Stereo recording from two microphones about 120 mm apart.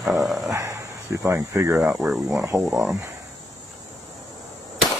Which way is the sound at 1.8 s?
5° right (ahead or behind).